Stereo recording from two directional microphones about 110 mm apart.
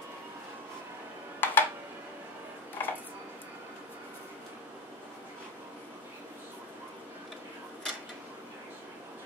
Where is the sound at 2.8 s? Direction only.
20° left (ahead or behind).